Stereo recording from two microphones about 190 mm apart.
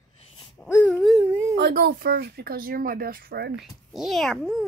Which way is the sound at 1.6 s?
60° right (ahead or behind).